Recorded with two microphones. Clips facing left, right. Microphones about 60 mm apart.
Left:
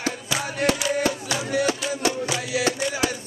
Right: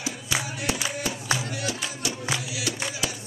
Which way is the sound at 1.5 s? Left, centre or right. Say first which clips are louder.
Left 9 dB; left.